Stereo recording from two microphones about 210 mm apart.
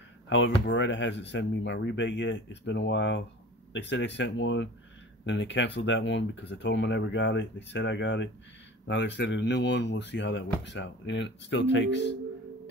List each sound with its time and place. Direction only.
0.3 s speech: 60° left (ahead or behind)